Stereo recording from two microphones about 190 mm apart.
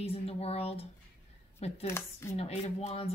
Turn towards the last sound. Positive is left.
turn(degrees=30)  # may be behind; listen again after turning